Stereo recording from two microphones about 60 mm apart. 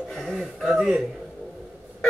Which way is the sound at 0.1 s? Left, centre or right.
Centre.